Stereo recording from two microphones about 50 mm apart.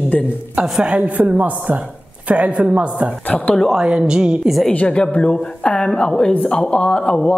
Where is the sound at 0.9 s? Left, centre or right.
Right.